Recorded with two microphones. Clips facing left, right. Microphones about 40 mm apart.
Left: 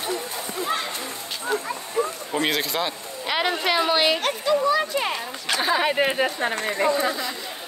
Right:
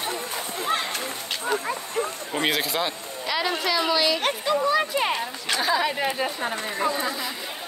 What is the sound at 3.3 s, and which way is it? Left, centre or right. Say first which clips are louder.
Speech: left 2 dB; left.